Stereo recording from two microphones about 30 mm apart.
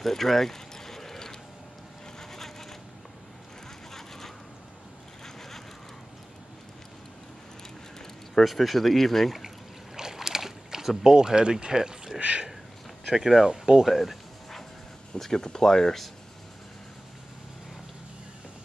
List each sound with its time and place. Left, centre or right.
0.0 s mechanisms: centre
2.1 s vehicle: centre
3.9 s vehicle: centre
8.5 s speech: centre
9.9 s boat: centre
11.1 s speech: right
12.2 s speech: right
13.1 s speech: centre
13.8 s speech: centre
15.1 s speech: centre